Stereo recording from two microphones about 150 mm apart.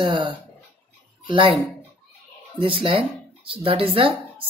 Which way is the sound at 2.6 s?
35° right (ahead or behind).